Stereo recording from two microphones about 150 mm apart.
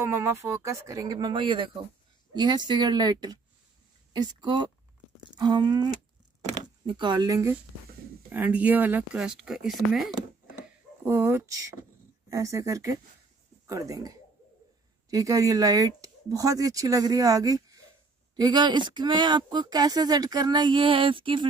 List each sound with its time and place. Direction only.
0.0 s speech: 15° right (ahead or behind); by 10.1 s centre (ahead or behind)
11.1 s speech: 15° right (ahead or behind); by 21.5 s 35° right (ahead or behind)